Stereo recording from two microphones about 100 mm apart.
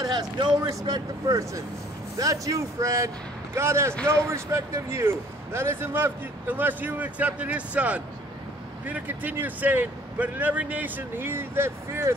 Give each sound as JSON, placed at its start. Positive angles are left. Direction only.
{"t": 0.0, "sound": "speech", "side_deg": -45}